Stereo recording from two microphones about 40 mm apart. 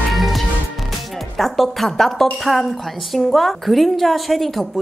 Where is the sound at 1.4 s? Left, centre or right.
Centre.